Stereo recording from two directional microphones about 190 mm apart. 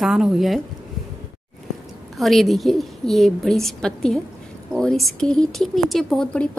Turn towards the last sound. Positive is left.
turn(degrees=5)  # may be behind; listen again after turning